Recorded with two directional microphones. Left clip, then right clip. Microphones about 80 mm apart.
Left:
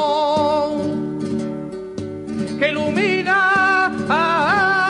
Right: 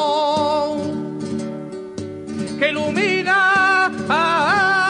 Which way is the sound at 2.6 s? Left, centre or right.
Right.